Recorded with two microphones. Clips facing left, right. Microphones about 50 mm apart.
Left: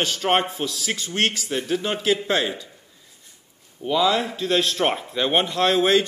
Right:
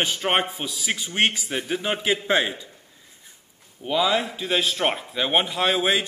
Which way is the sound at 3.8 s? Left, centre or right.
Centre.